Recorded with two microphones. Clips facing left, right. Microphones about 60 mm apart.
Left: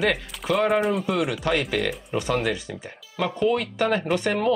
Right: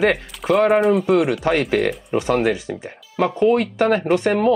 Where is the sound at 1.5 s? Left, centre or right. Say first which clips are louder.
Right 6 dB; right.